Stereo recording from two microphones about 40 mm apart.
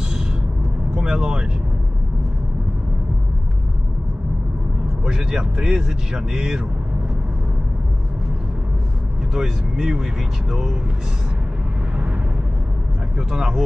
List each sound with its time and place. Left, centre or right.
0.9 s vehicle: centre
5.0 s speech: centre
9.3 s speech: centre
13.3 s speech: centre